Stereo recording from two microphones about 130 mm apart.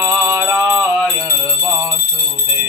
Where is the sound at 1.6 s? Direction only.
15° right (ahead or behind).